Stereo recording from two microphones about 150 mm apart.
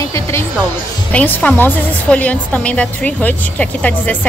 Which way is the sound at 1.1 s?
10° left (ahead or behind).